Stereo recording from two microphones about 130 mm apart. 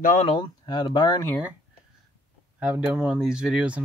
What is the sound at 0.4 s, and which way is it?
Speech, 35° left (ahead or behind).